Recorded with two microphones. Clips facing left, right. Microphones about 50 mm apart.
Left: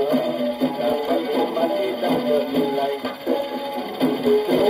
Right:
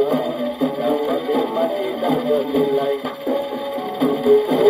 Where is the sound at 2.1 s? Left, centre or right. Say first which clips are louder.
Right 3 dB; left.